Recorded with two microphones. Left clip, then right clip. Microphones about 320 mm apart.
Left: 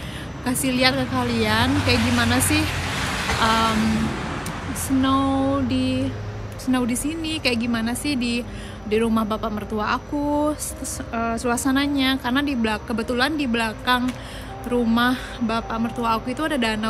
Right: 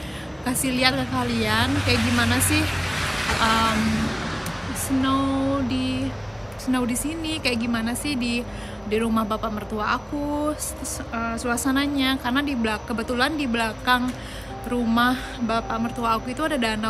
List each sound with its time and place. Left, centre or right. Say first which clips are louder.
0.5 s a woman's voice: left 2 dB; centre
2.6 s vehicle: even; left
3.4 s a woman's voice: left 1 dB; centre
4.8 s a sound: left 3 dB; centre
6.6 s a woman's voice: left 2 dB; centre